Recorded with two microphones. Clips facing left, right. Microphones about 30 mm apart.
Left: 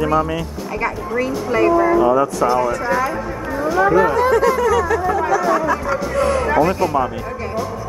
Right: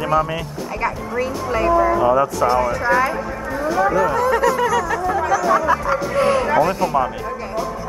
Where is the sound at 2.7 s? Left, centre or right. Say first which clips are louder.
Right 1 dB; centre.